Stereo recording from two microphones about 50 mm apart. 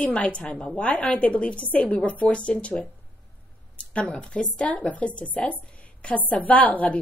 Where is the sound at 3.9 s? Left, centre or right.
Left.